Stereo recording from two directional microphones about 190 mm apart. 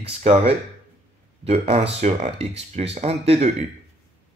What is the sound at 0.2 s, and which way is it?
Speech, 30° right (ahead or behind).